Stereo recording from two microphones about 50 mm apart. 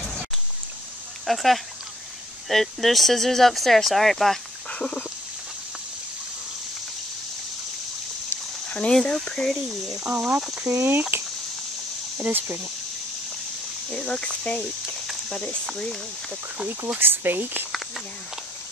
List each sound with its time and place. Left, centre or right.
1.2 s speech: centre
4.6 s a sound: left
8.6 s a sound: centre
8.9 s speech: centre
9.9 s speech: centre
10.7 s speech: right
12.3 s speech: right
13.9 s speech: centre
17.0 s speech: right